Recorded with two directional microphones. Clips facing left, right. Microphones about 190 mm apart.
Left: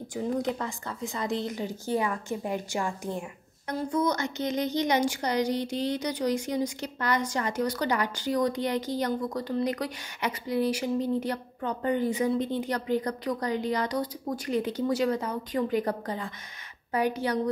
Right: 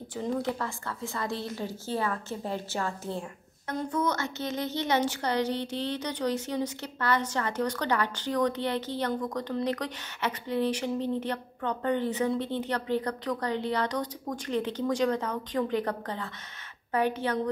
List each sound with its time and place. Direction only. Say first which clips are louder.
0.1 s speech: left 1 dB; 15° left (ahead or behind)